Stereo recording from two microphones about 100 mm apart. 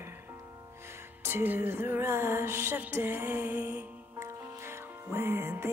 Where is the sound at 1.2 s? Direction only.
20° right (ahead or behind).